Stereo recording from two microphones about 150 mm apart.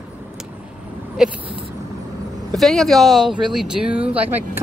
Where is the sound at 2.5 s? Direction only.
Centre (ahead or behind).